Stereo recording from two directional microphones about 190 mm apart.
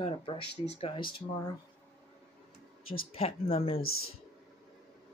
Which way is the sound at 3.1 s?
30° left (ahead or behind).